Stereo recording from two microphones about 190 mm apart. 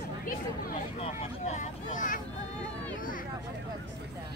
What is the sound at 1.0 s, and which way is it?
Vehicle, 35° left (ahead or behind).